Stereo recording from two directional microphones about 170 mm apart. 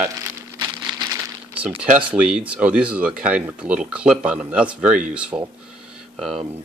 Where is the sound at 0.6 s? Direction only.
20° right (ahead or behind).